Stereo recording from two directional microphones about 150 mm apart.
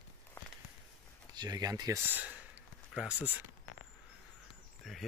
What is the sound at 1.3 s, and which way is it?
Speech, 25° right (ahead or behind).